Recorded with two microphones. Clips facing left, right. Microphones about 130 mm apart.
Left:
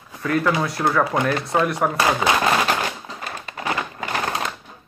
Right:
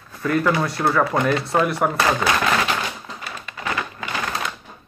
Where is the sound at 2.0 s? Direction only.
20° left (ahead or behind).